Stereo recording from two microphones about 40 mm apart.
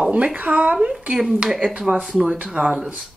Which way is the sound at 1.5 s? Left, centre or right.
Right.